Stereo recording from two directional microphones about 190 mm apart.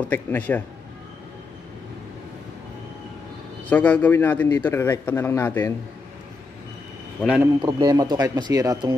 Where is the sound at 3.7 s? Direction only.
10° left (ahead or behind).